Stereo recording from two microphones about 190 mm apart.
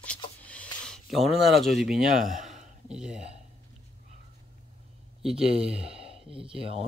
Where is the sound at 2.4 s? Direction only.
40° right (ahead or behind).